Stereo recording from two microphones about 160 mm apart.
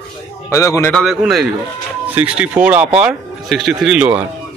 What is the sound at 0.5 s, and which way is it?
Speech, 20° left (ahead or behind).